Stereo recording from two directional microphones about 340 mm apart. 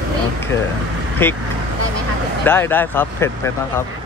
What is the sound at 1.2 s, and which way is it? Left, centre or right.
Speech, centre.